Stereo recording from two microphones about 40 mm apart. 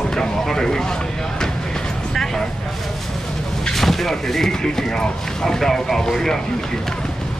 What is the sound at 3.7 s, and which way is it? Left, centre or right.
Speech, centre.